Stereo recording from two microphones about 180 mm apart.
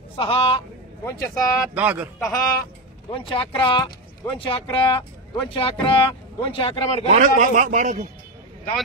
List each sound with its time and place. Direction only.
0.2 s a man's voice: 30° left (ahead or behind)
1.0 s speech: 15° left (ahead or behind)
1.6 s speech: 10° right (ahead or behind)
2.1 s speech: 15° left (ahead or behind)
3.1 s speech: 30° left (ahead or behind)
7.1 s a man's voice: 45° right (ahead or behind)